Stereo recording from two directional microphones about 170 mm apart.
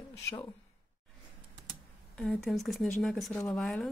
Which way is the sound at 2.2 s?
5° left (ahead or behind).